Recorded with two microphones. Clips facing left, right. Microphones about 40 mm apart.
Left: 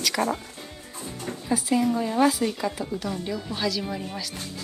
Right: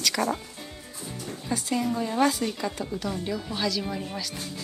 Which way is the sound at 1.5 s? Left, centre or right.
Centre.